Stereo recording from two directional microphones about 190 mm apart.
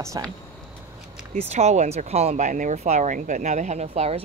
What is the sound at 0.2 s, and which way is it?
Speech, 20° right (ahead or behind).